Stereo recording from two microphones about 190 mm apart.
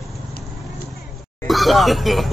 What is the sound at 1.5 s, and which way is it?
Speech, centre (ahead or behind).